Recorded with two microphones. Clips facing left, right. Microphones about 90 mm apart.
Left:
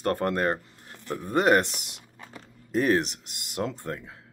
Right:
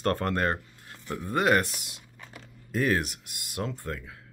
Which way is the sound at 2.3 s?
25° left (ahead or behind).